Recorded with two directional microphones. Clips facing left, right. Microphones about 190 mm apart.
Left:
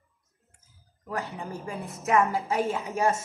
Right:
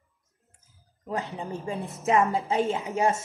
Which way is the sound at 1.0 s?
20° right (ahead or behind).